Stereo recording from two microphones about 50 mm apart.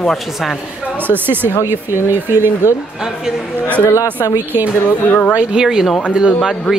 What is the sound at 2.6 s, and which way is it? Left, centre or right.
Speech, right.